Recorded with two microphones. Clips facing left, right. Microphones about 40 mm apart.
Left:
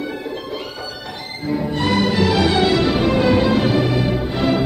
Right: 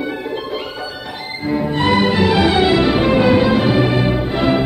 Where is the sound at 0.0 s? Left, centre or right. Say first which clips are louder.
Right 3 dB; right.